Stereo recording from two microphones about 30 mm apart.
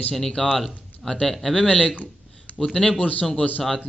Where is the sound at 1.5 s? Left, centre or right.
Left.